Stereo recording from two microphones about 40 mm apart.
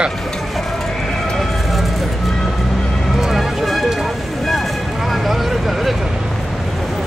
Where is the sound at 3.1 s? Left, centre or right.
Centre.